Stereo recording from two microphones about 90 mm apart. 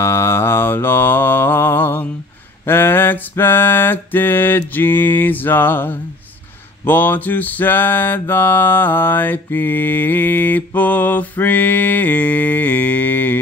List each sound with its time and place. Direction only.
0.0 s mantra: 30° left (ahead or behind)